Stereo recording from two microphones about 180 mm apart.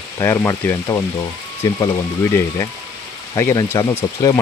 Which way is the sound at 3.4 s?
15° left (ahead or behind).